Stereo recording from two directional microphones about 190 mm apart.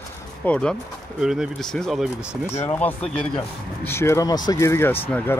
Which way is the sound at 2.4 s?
10° left (ahead or behind).